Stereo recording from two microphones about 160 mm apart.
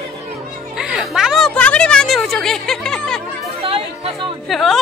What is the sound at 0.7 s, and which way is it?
A woman's voice, 5° right (ahead or behind).